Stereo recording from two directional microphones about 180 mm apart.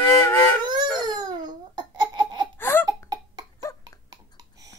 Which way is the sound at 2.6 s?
10° left (ahead or behind).